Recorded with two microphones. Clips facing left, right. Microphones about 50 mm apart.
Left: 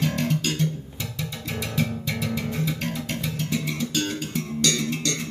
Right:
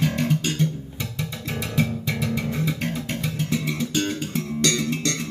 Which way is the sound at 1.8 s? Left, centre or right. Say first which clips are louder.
Right 3 dB; centre.